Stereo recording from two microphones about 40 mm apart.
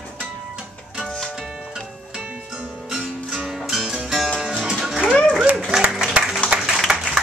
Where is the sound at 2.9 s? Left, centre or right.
Centre.